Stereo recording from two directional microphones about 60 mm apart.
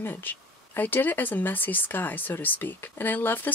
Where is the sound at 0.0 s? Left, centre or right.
Left.